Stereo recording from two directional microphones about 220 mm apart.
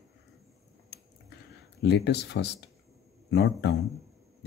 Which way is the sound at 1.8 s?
50° left (ahead or behind).